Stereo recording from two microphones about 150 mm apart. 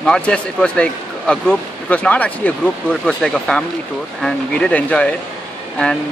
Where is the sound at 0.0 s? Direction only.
5° left (ahead or behind).